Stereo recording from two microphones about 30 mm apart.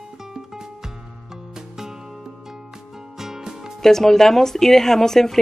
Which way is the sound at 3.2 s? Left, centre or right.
Centre.